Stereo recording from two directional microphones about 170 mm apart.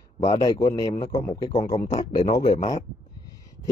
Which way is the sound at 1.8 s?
40° left (ahead or behind).